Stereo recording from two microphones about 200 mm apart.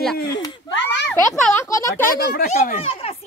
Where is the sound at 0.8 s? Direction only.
60° left (ahead or behind).